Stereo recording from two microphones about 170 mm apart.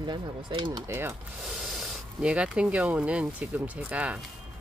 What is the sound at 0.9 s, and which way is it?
Speech, 15° right (ahead or behind).